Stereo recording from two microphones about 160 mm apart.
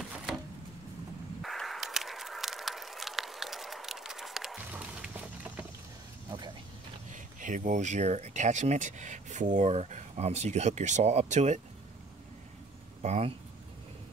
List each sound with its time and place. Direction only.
1.4 s a sound: centre (ahead or behind)
4.6 s music: 10° right (ahead or behind)
7.1 s speech: 55° right (ahead or behind)
13.0 s speech: 45° right (ahead or behind)